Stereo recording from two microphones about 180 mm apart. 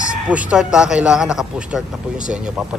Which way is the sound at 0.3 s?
5° right (ahead or behind).